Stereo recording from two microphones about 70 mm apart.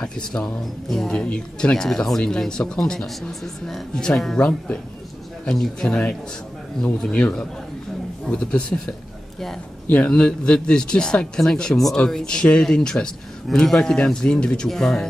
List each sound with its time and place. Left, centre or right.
0.0 s speech: centre
4.4 s speech: left
5.4 s speech: centre
8.3 s speech: centre
9.8 s speech: centre